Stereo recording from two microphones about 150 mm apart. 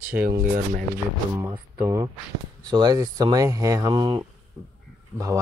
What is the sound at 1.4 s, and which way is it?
Speech, 20° right (ahead or behind).